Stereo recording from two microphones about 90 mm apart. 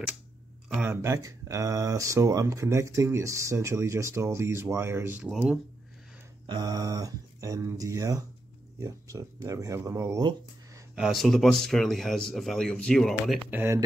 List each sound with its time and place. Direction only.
0.8 s speech: 35° right (ahead or behind)
5.2 s speech: 10° right (ahead or behind)
6.4 s speech: 45° right (ahead or behind)
11.0 s speech: centre (ahead or behind)
13.5 s speech: 20° right (ahead or behind)